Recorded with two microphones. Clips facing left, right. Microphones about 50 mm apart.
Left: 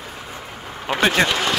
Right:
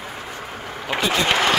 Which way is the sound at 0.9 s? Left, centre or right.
Left.